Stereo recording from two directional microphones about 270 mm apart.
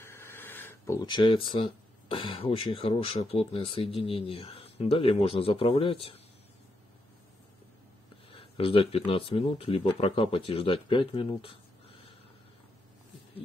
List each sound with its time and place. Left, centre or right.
0.0 s speech: centre
8.3 s speech: left